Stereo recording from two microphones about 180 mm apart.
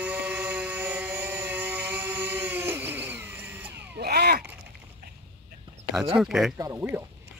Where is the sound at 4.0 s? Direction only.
60° right (ahead or behind).